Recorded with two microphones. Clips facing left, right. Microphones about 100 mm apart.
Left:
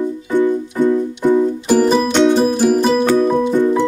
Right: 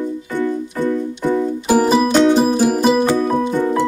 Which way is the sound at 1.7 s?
10° right (ahead or behind).